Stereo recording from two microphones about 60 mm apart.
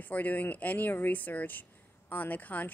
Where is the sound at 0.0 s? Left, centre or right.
Left.